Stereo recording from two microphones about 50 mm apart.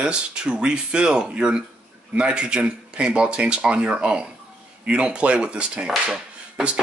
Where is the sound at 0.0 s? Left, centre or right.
Centre.